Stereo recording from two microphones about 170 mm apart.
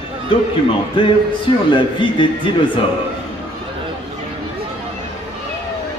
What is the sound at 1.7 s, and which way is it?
Speech, 30° left (ahead or behind).